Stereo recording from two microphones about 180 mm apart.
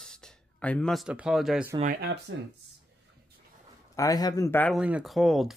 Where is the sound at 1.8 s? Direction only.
60° right (ahead or behind).